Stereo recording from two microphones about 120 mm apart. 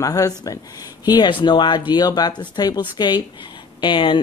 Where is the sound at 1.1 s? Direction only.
40° left (ahead or behind).